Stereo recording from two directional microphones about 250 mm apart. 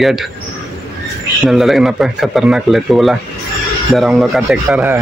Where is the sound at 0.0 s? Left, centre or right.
Centre.